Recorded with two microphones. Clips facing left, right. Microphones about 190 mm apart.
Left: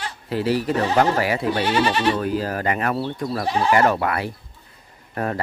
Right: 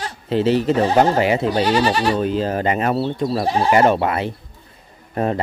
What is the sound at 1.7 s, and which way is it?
Speech, 40° right (ahead or behind).